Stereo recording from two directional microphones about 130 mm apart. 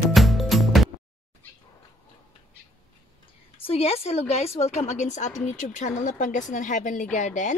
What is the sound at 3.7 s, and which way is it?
A woman's voice, 50° left (ahead or behind).